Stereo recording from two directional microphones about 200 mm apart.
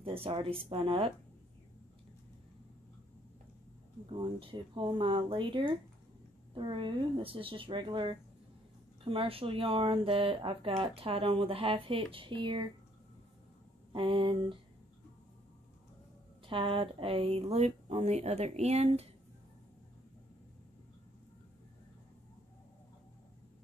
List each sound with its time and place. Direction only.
0.0 s speech: 25° right (ahead or behind)
4.1 s speech: 25° right (ahead or behind)
13.9 s speech: 25° right (ahead or behind)
16.4 s speech: 25° right (ahead or behind)